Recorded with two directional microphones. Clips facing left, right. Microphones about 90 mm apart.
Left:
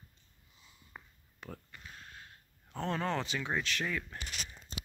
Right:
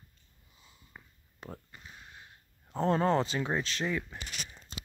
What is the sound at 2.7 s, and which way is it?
Speech, 35° right (ahead or behind).